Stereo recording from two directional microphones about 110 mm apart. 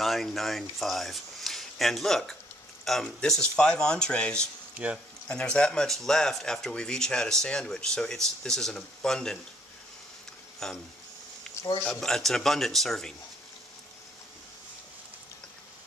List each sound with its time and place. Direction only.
0.0 s speech: centre (ahead or behind)
4.7 s speech: 10° right (ahead or behind)
5.3 s speech: 10° left (ahead or behind)
10.6 s speech: 5° left (ahead or behind)
11.8 s speech: 5° left (ahead or behind)